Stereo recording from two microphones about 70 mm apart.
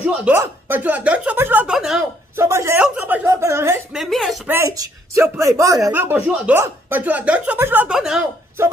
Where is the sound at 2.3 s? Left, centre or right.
Right.